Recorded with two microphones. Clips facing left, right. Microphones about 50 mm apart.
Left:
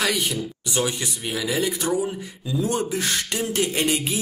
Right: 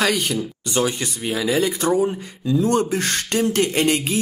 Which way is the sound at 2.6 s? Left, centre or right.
Right.